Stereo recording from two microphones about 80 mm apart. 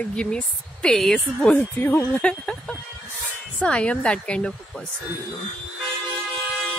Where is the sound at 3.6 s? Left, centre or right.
Centre.